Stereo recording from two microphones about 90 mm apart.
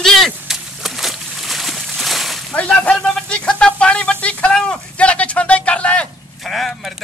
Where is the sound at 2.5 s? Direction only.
15° left (ahead or behind).